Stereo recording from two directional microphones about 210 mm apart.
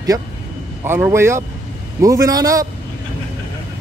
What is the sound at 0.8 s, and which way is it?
A man's voice, 10° right (ahead or behind).